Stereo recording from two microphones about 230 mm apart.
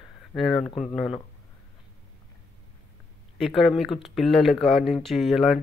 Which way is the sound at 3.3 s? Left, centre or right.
Centre.